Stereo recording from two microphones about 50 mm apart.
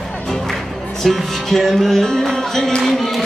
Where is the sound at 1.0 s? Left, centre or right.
Centre.